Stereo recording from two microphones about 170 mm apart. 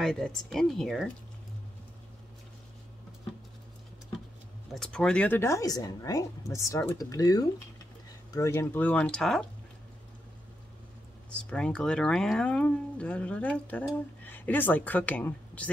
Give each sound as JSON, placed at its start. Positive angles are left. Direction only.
{"t": 0.0, "sound": "speech", "side_deg": 5}
{"t": 4.7, "sound": "speech", "side_deg": 5}
{"t": 11.3, "sound": "a woman's voice", "side_deg": 5}